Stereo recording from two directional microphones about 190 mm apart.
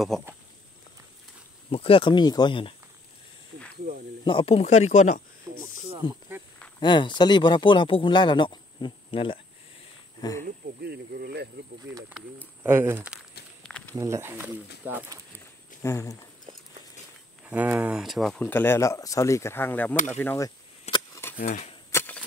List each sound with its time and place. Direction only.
0.1 s speech: centre (ahead or behind)
1.7 s speech: 30° left (ahead or behind)
4.2 s speech: 25° left (ahead or behind)
5.5 s snake: 20° right (ahead or behind)
6.0 s speech: 25° left (ahead or behind)
10.4 s speech: 55° right (ahead or behind)
11.9 s speech: 75° right (ahead or behind)
12.6 s speech: 10° right (ahead or behind)
15.8 s speech: 15° left (ahead or behind)
17.5 s speech: 5° right (ahead or behind); by 20.5 s 15° left (ahead or behind)
21.1 s a sound: 10° left (ahead or behind)
21.4 s speech: 40° left (ahead or behind)
21.9 s typewriter: 10° left (ahead or behind)